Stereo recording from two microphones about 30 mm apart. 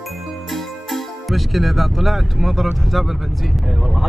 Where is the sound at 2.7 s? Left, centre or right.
Centre.